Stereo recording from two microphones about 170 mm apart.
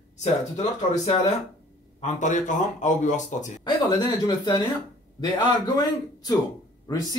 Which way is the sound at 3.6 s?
25° left (ahead or behind).